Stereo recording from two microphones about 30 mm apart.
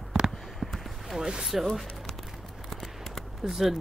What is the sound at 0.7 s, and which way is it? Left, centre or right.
Basketball bounce, centre.